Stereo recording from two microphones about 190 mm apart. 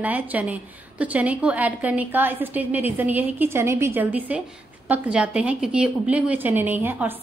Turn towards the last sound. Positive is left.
turn(degrees=-10)  # may be behind; listen again after turning